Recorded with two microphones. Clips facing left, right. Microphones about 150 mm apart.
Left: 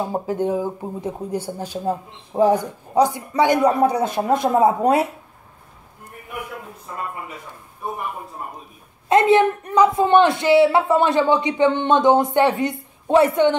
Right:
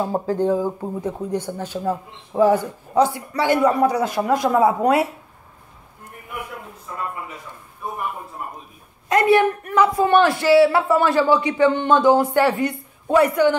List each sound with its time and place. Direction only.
0.0 s a man's voice: 15° left (ahead or behind)
9.1 s a man's voice: 20° left (ahead or behind)